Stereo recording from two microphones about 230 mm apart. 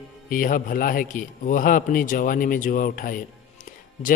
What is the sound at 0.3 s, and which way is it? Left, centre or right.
Speech, left.